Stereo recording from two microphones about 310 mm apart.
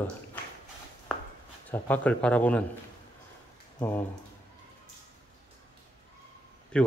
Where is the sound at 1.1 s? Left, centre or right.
Centre.